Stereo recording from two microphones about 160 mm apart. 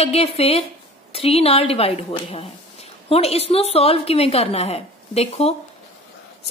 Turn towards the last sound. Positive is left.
turn(degrees=40)  # may be behind; listen again after turning